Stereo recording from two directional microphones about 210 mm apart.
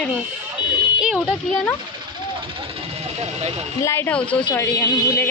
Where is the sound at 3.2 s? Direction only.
30° right (ahead or behind).